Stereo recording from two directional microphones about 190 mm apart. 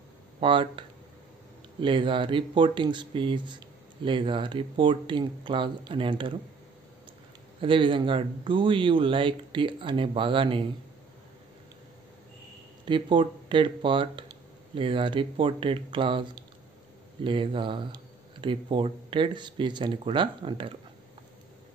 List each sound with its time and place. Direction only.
0.4 s speech: 25° right (ahead or behind)
7.6 s speech: 25° right (ahead or behind)
12.8 s speech: 25° right (ahead or behind)